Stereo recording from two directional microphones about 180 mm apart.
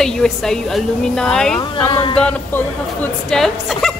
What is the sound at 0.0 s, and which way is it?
Speech, 5° left (ahead or behind).